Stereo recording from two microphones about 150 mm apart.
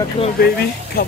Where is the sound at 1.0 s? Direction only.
75° left (ahead or behind).